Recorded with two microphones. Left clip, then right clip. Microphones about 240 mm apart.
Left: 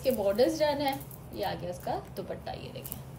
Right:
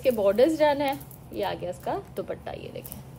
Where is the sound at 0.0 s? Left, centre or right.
Centre.